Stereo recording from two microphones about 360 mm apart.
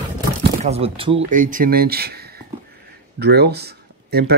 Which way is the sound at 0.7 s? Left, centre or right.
Centre.